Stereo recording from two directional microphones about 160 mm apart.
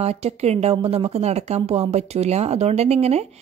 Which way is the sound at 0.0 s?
40° right (ahead or behind).